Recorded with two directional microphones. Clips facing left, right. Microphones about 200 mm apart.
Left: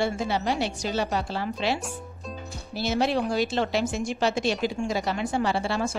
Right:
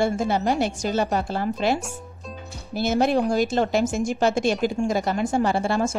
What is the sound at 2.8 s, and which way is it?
A woman's voice, 50° right (ahead or behind).